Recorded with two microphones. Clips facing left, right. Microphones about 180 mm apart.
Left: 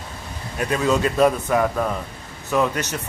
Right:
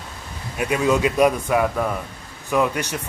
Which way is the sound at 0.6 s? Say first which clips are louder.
Right 1 dB; 10° right (ahead or behind).